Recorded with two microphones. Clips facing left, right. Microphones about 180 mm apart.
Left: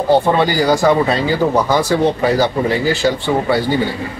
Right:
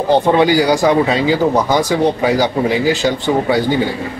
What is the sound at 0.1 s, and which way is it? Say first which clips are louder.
Speech: right 2 dB; 15° right (ahead or behind).